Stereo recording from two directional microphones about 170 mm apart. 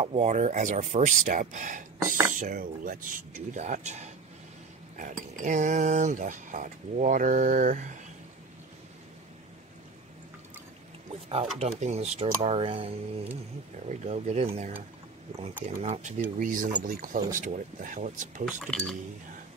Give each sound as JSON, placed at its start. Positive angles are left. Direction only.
{"t": 0.0, "sound": "speech", "side_deg": -40}
{"t": 11.5, "sound": "speech", "side_deg": -40}
{"t": 15.6, "sound": "speech", "side_deg": -40}
{"t": 18.4, "sound": "speech", "side_deg": 0}